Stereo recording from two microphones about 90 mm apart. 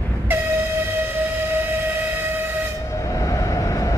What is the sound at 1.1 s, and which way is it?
Train, 25° right (ahead or behind).